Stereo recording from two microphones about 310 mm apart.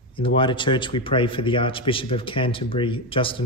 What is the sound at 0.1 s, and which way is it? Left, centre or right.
Speech, centre.